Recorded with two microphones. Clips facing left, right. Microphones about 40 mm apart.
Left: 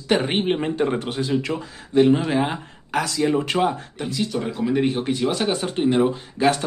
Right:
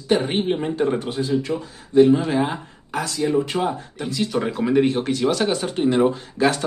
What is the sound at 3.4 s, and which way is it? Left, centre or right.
Speech, left.